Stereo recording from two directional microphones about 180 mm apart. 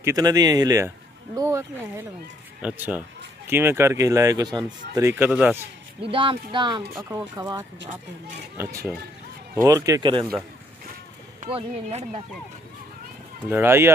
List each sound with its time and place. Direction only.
0.0 s speech: 20° right (ahead or behind)
5.9 s speech: 30° right (ahead or behind)
11.5 s speech: 35° right (ahead or behind)
13.5 s speech: 10° right (ahead or behind)